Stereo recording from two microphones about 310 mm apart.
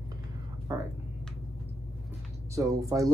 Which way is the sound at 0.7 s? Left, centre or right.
Centre.